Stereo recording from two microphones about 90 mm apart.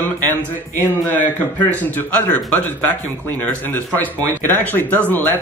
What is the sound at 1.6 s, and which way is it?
Speech, 15° left (ahead or behind).